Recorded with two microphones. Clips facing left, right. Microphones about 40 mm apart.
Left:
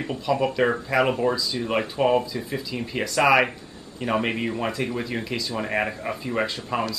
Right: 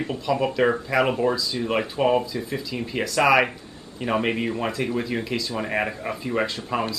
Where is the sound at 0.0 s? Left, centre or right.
Centre.